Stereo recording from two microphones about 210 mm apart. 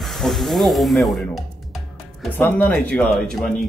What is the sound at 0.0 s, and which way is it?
Speech, centre (ahead or behind).